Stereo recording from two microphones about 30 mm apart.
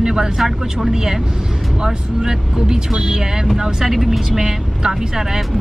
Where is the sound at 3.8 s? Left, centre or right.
Centre.